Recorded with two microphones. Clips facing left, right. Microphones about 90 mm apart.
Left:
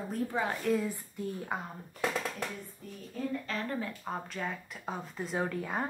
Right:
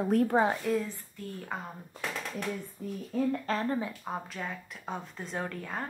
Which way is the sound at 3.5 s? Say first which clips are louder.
Right 5 dB; 35° right (ahead or behind).